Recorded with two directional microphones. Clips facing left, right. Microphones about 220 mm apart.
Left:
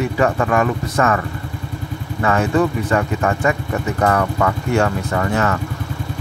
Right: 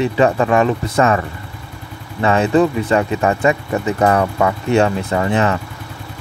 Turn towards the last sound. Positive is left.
turn(degrees=-20)  # may be behind; listen again after turning